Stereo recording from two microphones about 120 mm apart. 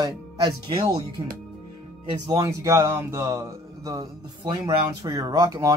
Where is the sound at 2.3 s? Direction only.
25° right (ahead or behind).